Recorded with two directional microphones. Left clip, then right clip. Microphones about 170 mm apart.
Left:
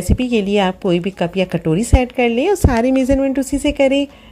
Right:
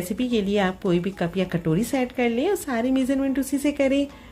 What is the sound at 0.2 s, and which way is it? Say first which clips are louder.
A woman's voice: left 7 dB; 30° left (ahead or behind).